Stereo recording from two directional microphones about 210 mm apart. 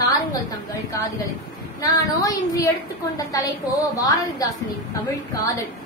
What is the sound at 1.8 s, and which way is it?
A woman's voice, 15° left (ahead or behind).